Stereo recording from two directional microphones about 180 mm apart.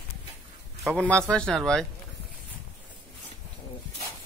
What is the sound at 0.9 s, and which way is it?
Speech, 5° left (ahead or behind).